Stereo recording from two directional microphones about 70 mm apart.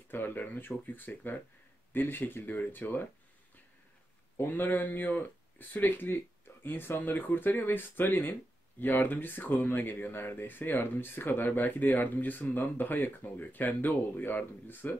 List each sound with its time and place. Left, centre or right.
0.1 s speech: left
4.4 s speech: left